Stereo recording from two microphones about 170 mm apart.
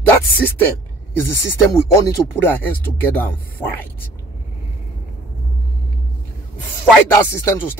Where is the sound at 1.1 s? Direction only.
20° left (ahead or behind).